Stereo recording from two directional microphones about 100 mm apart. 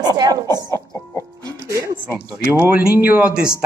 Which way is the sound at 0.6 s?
30° left (ahead or behind).